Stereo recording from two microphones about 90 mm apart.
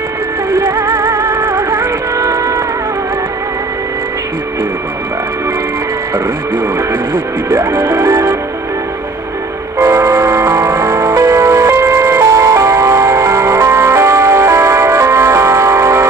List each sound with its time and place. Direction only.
0.5 s music: 35° right (ahead or behind)
2.1 s a sound: 40° right (ahead or behind)
6.1 s speech: 30° right (ahead or behind)
7.4 s music: 35° right (ahead or behind)
9.8 s music: 30° right (ahead or behind)